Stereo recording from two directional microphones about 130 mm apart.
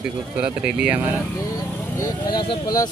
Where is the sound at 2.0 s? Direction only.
30° left (ahead or behind).